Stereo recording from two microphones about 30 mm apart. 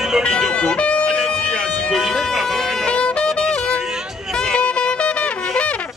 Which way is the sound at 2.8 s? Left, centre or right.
Left.